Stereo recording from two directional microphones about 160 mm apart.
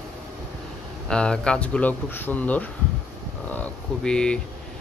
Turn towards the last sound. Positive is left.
turn(degrees=5)  # may be behind; listen again after turning